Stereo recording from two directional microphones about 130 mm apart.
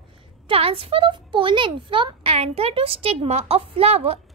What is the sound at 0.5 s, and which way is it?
A child's voice, 45° right (ahead or behind).